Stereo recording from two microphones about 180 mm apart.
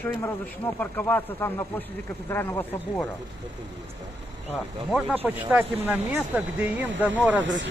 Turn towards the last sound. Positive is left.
turn(degrees=-10)  # may be behind; listen again after turning